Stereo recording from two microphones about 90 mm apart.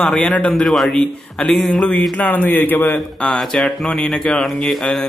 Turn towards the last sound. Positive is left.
turn(degrees=5)  # may be behind; listen again after turning